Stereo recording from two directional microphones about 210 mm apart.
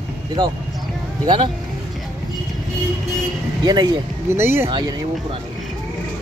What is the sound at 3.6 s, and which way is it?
Speech, 20° right (ahead or behind).